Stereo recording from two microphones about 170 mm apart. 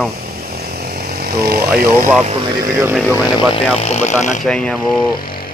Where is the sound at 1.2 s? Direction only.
65° right (ahead or behind).